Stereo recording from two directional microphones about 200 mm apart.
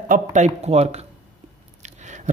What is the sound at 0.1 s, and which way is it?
Speech, 35° right (ahead or behind).